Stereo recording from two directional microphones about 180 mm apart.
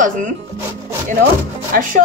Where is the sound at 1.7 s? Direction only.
50° right (ahead or behind).